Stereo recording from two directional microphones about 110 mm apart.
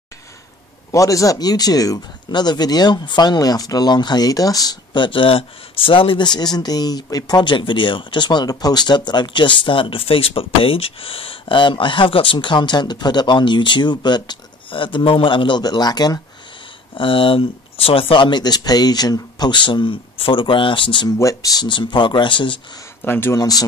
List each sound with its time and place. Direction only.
0.9 s speech: 30° left (ahead or behind)
16.9 s speech: 50° left (ahead or behind)
21.2 s speech: 30° left (ahead or behind); by 22.6 s 50° left (ahead or behind)
23.0 s speech: 20° left (ahead or behind)
23.3 s speech: 35° left (ahead or behind)